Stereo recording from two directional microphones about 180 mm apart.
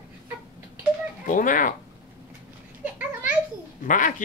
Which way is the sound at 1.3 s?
50° left (ahead or behind).